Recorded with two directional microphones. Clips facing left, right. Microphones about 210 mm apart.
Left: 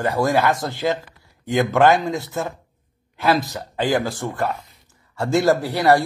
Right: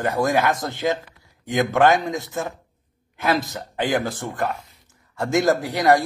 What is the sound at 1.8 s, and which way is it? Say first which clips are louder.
Speech: left 1 dB; 20° right (ahead or behind).